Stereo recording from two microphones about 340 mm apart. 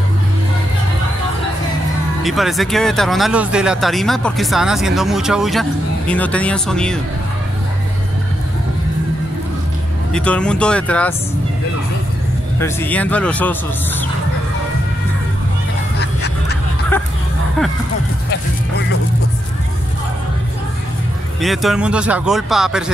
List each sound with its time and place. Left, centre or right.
2.2 s speech: centre
10.1 s speech: centre
12.5 s speech: centre
16.0 s duck: left
16.9 s speech: centre
21.4 s speech: centre